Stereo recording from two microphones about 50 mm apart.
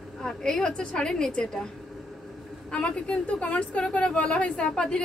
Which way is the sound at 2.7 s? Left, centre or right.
Left.